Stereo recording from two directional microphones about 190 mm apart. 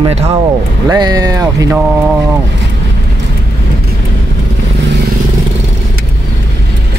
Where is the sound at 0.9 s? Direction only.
20° right (ahead or behind).